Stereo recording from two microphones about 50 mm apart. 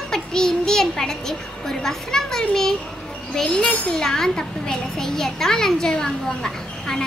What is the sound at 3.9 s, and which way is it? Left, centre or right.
A child's voice, centre.